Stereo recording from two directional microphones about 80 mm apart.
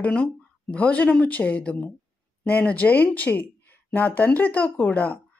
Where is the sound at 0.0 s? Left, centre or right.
Centre.